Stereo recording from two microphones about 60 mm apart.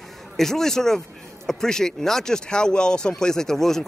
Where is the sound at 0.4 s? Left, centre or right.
Centre.